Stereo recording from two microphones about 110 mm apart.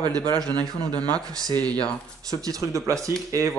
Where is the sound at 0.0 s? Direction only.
40° right (ahead or behind).